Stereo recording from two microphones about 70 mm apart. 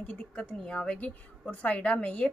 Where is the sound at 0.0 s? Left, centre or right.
Centre.